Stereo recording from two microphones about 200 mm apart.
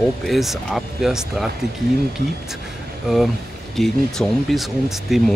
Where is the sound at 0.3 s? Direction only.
Centre (ahead or behind).